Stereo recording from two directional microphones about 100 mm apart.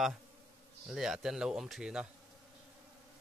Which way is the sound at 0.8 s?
5° right (ahead or behind).